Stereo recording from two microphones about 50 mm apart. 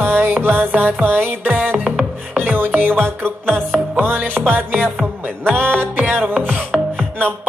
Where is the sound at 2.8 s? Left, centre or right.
Right.